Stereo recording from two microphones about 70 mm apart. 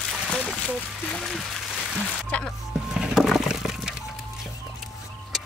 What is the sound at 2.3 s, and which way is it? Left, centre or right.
Speech, centre.